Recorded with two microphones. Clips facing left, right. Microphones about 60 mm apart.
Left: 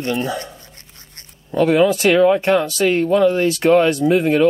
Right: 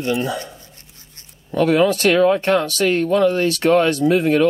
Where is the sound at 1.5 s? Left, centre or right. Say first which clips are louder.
Left 1 dB; centre.